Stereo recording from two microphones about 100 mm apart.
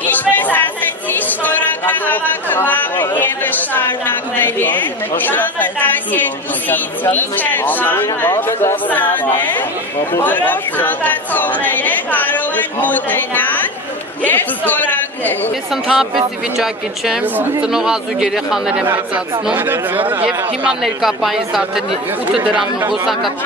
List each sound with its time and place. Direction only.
0.0 s chatter: 15° left (ahead or behind)
4.4 s a woman's voice: 20° left (ahead or behind)
15.7 s speech: 5° right (ahead or behind)
17.2 s a woman's voice: 15° right (ahead or behind)
17.6 s speech: 5° right (ahead or behind)
19.5 s speech: 20° right (ahead or behind); by 21.8 s centre (ahead or behind)
22.4 s a woman's voice: 15° right (ahead or behind)